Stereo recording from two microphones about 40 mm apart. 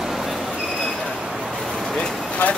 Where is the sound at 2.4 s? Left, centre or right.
Left.